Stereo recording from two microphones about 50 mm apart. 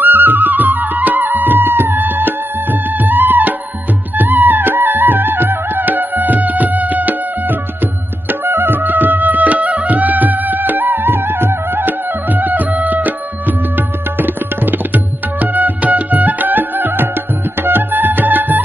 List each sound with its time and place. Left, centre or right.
0.0 s music: right